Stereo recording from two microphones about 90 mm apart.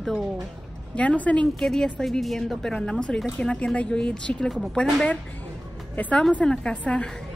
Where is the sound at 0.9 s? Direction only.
15° left (ahead or behind).